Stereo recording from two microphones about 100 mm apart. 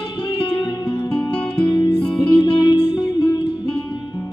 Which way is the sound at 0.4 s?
50° left (ahead or behind).